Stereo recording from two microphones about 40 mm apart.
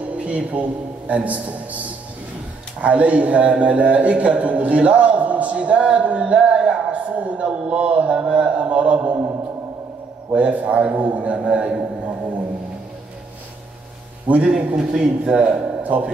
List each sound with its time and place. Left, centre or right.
0.1 s a man's voice: right
10.3 s a man's voice: right
14.2 s a man's voice: right
14.8 s speech: right
15.8 s speech: right